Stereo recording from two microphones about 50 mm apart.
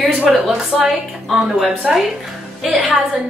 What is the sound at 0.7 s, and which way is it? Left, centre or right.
A woman's voice, centre.